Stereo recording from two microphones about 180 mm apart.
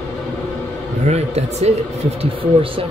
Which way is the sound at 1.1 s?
35° right (ahead or behind).